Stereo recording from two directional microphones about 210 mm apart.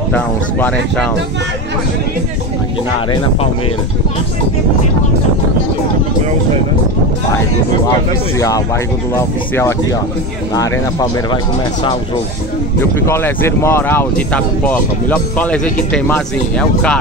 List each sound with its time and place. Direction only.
0.1 s speech: 10° left (ahead or behind)
7.9 s speech: 15° left (ahead or behind)
13.0 s speech: 10° left (ahead or behind)